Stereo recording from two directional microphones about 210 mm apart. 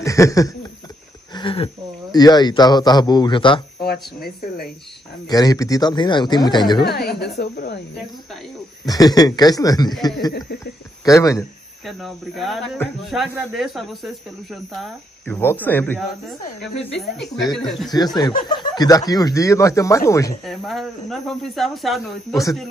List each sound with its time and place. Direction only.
0.0 s a sound: 15° left (ahead or behind)
2.1 s speech: 20° left (ahead or behind)
3.8 s speech: 45° left (ahead or behind)
5.3 s speech: 15° left (ahead or behind)
6.8 s a sound: 50° left (ahead or behind)
8.8 s speech: 15° left (ahead or behind)
11.1 s speech: 15° left (ahead or behind)
11.8 s speech: centre (ahead or behind)
17.6 s speech: centre (ahead or behind)
17.9 s speech: 20° left (ahead or behind)
20.4 s speech: centre (ahead or behind)